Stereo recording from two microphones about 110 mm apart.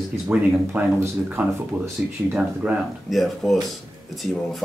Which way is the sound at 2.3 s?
Centre (ahead or behind).